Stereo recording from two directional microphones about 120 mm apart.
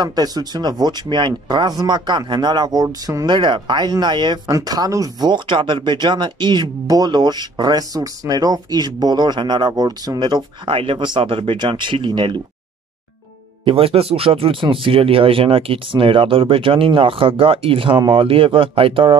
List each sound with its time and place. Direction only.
0.0 s speech: 35° right (ahead or behind)
3.3 s speech: 40° right (ahead or behind)
13.7 s speech: 50° right (ahead or behind)